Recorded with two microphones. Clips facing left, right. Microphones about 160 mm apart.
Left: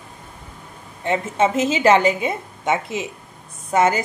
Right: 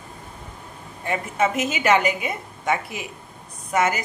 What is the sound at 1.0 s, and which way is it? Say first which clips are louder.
A woman's voice: left 4 dB; 25° left (ahead or behind).